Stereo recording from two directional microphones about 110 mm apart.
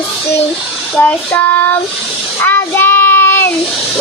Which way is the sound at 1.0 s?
15° left (ahead or behind).